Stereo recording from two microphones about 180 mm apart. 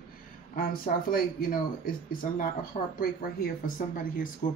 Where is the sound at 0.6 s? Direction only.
50° left (ahead or behind).